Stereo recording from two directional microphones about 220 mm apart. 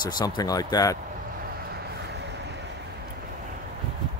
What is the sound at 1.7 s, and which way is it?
Vehicle, 50° right (ahead or behind).